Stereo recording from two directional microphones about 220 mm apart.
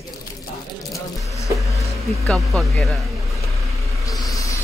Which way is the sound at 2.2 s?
Centre (ahead or behind).